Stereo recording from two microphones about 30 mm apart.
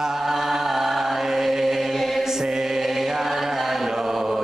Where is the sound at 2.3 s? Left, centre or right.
Centre.